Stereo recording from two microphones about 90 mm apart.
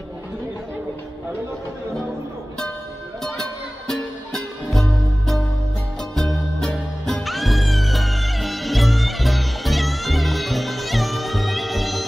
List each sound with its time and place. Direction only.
3.3 s music: 5° left (ahead or behind)